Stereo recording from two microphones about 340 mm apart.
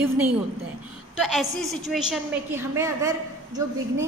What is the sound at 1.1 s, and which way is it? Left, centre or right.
A woman's voice, centre.